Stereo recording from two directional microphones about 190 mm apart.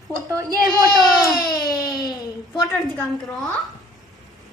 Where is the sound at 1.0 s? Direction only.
Centre (ahead or behind).